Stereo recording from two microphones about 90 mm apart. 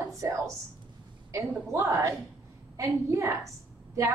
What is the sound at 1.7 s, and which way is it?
A woman's voice, 35° right (ahead or behind).